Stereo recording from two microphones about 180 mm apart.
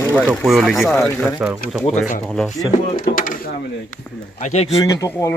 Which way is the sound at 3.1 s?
50° left (ahead or behind).